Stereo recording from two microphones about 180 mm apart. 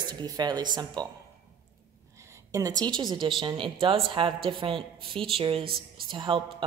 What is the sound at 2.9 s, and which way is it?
Speech, 25° right (ahead or behind).